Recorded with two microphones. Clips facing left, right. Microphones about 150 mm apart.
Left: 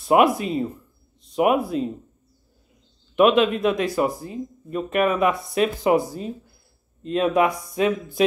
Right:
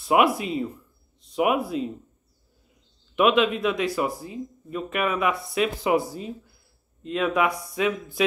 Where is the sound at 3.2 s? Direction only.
45° left (ahead or behind).